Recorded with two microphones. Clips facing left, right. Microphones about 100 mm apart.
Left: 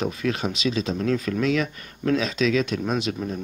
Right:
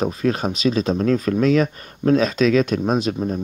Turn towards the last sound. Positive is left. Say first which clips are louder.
# right 5 dB
turn(degrees=-40)  # may be behind; listen again after turning